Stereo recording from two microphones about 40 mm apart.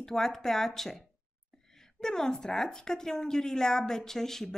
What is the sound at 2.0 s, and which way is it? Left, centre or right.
A woman's voice, centre.